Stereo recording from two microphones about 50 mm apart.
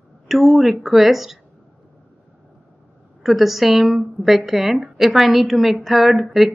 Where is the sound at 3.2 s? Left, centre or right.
Centre.